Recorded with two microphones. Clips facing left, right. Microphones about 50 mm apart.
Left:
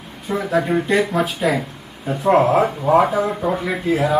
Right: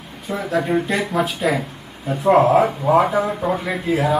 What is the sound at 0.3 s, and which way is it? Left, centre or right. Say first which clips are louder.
Speech: left 1 dB; centre.